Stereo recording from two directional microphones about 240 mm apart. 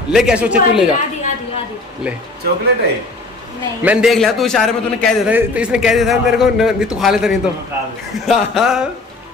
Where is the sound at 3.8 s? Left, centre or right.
Centre.